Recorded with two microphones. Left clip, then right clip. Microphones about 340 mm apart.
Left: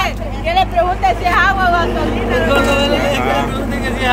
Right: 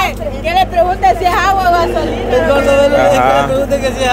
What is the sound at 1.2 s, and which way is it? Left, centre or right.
Speech, right.